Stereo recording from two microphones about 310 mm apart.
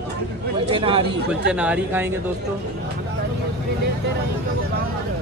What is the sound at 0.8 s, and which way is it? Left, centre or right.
Speech, centre.